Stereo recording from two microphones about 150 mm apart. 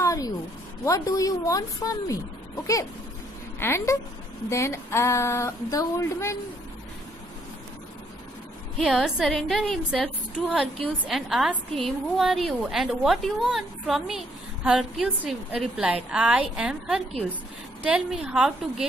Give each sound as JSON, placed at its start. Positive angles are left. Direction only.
{"t": 0.0, "sound": "a sound", "side_deg": 20}
{"t": 0.8, "sound": "speech", "side_deg": 20}
{"t": 8.7, "sound": "a woman's voice", "side_deg": 0}